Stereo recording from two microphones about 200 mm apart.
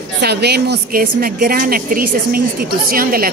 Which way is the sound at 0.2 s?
55° right (ahead or behind).